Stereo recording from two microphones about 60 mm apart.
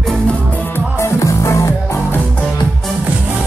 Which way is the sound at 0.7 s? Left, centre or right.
Left.